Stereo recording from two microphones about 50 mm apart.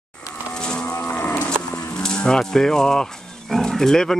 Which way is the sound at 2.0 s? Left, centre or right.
Centre.